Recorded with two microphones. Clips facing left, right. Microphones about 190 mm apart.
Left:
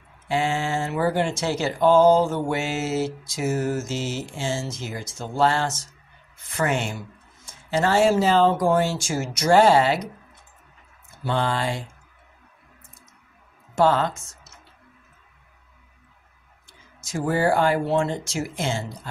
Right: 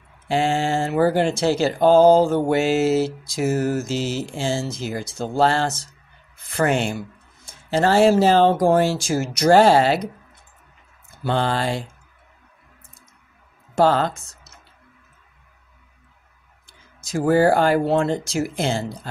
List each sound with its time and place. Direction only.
0.3 s mantra: 30° right (ahead or behind)
11.2 s mantra: 35° right (ahead or behind)
13.7 s mantra: 35° right (ahead or behind)
17.0 s mantra: 40° right (ahead or behind)